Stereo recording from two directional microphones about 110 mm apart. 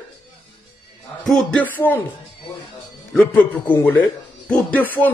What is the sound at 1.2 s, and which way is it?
Speech, 5° left (ahead or behind).